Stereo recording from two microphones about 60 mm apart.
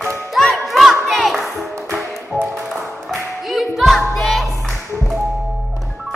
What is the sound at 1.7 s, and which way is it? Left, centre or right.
Music, right.